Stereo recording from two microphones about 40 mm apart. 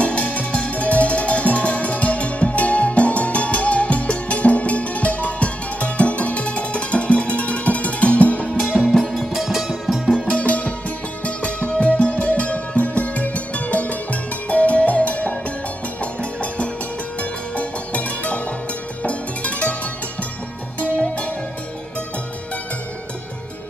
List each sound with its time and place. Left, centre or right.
0.0 s music: left
8.8 s music: centre
10.2 s music: left